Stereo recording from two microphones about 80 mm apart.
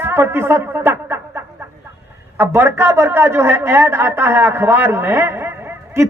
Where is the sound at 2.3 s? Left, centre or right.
Right.